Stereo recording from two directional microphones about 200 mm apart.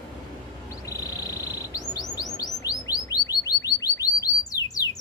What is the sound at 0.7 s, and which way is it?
Chirp, 15° left (ahead or behind).